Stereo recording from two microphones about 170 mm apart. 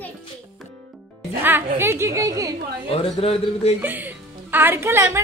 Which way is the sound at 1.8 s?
15° right (ahead or behind).